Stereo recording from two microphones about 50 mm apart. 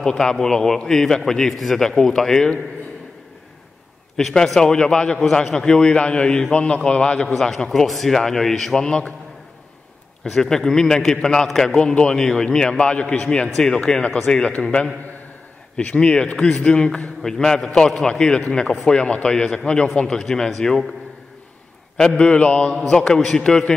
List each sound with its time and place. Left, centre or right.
0.0 s a man's voice: centre
4.2 s a man's voice: centre
8.8 s a man's voice: centre
10.2 s a man's voice: centre
15.7 s a man's voice: centre
22.1 s a man's voice: left
22.8 s a man's voice: centre